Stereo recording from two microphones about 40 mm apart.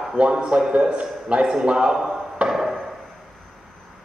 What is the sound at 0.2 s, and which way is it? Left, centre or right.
A man's voice, right.